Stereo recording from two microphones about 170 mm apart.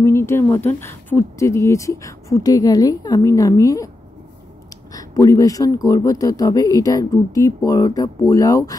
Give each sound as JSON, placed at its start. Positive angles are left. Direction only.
{"t": 0.0, "sound": "speech", "side_deg": 15}
{"t": 4.9, "sound": "speech", "side_deg": 20}